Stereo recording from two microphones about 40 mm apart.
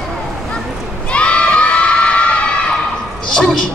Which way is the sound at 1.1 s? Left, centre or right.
Left.